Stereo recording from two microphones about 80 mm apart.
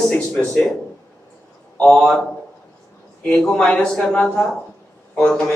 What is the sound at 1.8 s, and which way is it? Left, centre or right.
Speech, centre.